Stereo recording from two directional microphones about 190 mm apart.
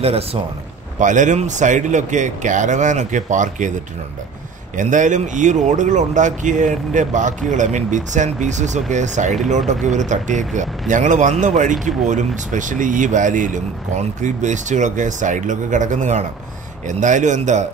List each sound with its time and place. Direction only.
0.0 s speech: 30° right (ahead or behind)
4.7 s speech: 40° right (ahead or behind)